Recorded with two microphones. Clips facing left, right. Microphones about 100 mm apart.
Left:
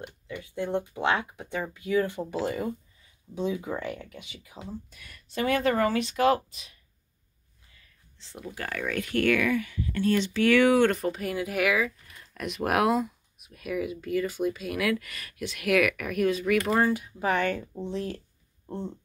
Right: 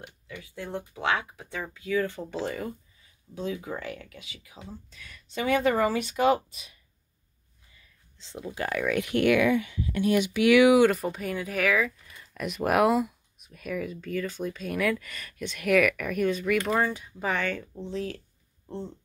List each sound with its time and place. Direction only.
0.4 s speech: 20° left (ahead or behind)
4.6 s speech: 10° left (ahead or behind)
8.2 s speech: 20° right (ahead or behind); by 18.9 s 15° left (ahead or behind)